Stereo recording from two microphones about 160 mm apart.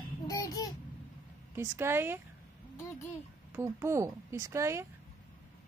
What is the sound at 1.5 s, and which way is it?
Speech, 15° right (ahead or behind).